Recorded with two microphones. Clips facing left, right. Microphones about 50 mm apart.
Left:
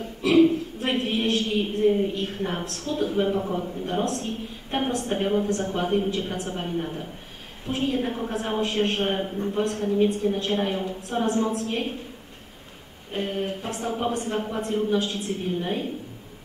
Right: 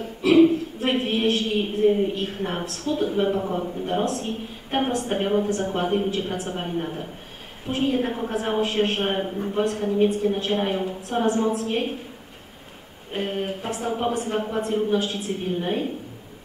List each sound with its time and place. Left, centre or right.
0.3 s a sound: centre
2.6 s speech: centre
3.2 s a woman's voice: centre
5.2 s a woman's voice: centre
5.5 s a woman's voice: centre
13.1 s a woman's voice: centre
15.6 s a woman's voice: centre